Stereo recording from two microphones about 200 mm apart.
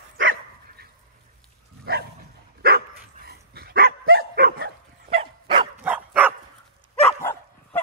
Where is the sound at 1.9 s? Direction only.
50° right (ahead or behind).